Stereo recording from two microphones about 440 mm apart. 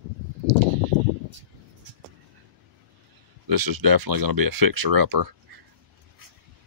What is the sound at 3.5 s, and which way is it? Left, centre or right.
Speech, right.